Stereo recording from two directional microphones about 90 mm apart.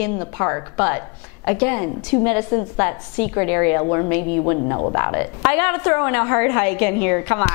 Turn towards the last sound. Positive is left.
turn(degrees=20)  # may be behind; listen again after turning